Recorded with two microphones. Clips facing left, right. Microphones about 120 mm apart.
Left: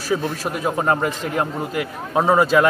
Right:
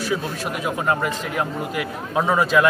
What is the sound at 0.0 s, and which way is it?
A man's voice, 40° left (ahead or behind).